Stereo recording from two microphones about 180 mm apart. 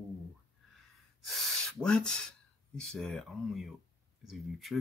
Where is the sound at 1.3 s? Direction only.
Centre (ahead or behind).